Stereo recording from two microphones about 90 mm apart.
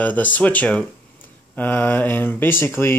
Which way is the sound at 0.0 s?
15° left (ahead or behind).